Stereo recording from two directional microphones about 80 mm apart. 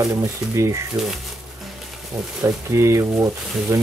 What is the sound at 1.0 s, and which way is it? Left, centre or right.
Speech, centre.